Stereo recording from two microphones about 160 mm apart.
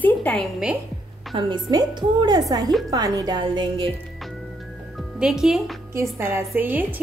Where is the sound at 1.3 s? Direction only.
30° right (ahead or behind).